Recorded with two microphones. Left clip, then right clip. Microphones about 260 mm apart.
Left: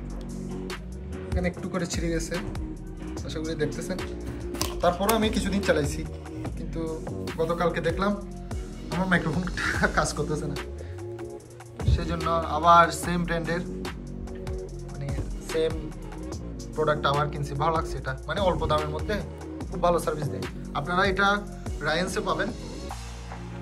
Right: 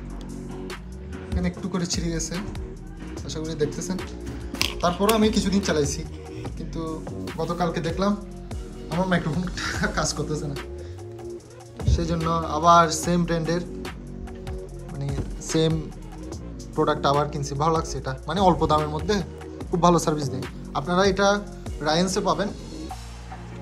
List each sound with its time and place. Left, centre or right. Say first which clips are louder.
1.3 s a man's voice: even; centre
11.9 s speech: right 1 dB; centre
16.8 s speech: right 2 dB; centre
17.2 s a man's voice: right 3 dB; centre
19.8 s speech: right 4 dB; right
20.7 s a man's voice: right 3 dB; centre